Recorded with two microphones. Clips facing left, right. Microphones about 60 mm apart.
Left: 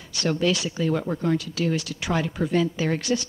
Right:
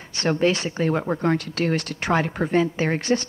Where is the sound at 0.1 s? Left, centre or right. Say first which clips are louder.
Right 3 dB; right.